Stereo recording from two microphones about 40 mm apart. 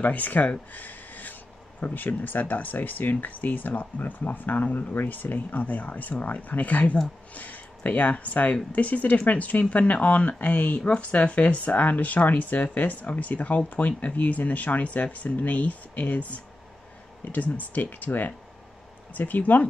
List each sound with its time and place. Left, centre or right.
0.0 s speech: left